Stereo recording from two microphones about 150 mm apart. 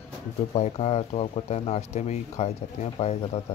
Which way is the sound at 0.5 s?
45° left (ahead or behind).